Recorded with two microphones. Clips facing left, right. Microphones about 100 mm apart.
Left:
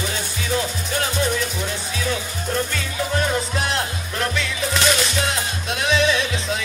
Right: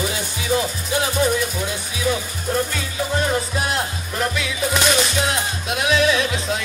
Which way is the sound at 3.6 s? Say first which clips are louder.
Right 1 dB; 5° right (ahead or behind).